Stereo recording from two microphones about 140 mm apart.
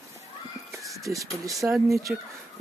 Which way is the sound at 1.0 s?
25° right (ahead or behind).